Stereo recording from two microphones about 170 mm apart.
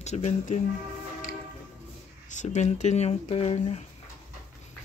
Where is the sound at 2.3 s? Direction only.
45° left (ahead or behind).